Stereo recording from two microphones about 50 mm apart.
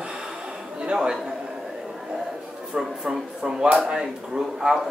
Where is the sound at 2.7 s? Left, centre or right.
Centre.